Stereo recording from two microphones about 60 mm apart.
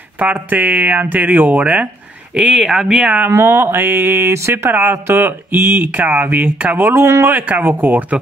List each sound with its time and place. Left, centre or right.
0.2 s speech: right
2.6 s speech: centre
3.0 s speech: centre
3.3 s speech: right
6.9 s speech: right
7.3 s speech: right